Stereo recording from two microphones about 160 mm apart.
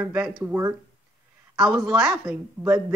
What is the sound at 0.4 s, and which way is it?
Speech, 15° right (ahead or behind).